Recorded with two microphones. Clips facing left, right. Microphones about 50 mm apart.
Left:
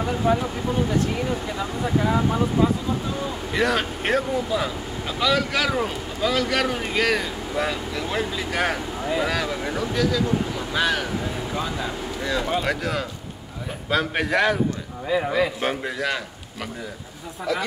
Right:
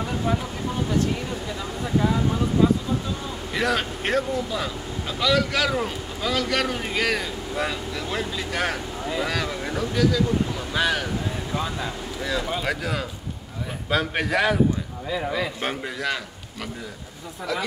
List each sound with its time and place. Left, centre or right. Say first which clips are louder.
0.3 s speech: left 5 dB; centre
2.0 s speech: left 1 dB; left
3.5 s speech: left 1 dB; centre
15.0 s a man's voice: left 5 dB; centre